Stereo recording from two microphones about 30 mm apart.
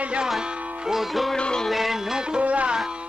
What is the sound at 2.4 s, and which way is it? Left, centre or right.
Music, right.